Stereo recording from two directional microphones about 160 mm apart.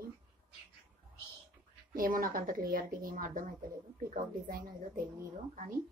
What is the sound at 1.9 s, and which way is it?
A woman's voice, 60° right (ahead or behind).